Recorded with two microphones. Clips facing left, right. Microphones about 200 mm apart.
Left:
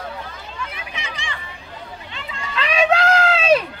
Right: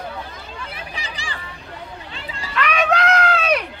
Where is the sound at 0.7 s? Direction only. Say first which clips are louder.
Even; 35° right (ahead or behind).